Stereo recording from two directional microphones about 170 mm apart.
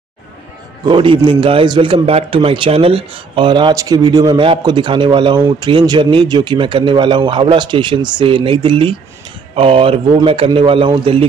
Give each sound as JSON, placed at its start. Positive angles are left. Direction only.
{"t": 0.8, "sound": "a man's voice", "side_deg": -30}